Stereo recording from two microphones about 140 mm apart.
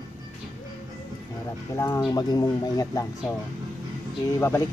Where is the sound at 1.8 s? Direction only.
20° left (ahead or behind).